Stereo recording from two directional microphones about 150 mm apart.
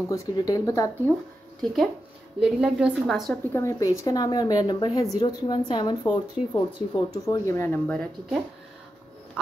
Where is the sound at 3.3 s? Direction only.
15° left (ahead or behind).